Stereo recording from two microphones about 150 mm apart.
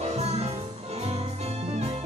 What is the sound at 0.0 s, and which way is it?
Music, 45° right (ahead or behind).